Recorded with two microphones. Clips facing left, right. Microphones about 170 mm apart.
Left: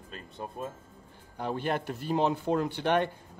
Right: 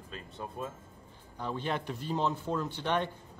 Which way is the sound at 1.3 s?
60° left (ahead or behind).